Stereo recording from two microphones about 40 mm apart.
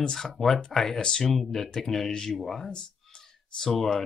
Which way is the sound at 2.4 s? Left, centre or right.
Centre.